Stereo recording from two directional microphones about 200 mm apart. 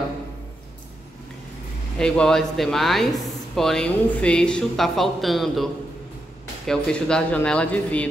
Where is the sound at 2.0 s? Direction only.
5° left (ahead or behind).